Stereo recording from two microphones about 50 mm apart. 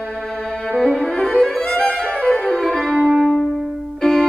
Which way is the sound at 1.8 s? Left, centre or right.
Left.